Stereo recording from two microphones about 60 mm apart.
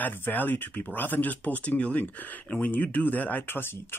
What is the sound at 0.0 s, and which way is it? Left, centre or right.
Speech, left.